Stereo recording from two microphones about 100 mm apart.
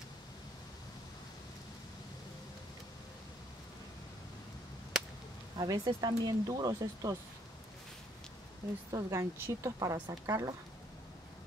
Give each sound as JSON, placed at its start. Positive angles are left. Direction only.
{"t": 5.6, "sound": "speech", "side_deg": -40}
{"t": 8.9, "sound": "speech", "side_deg": -30}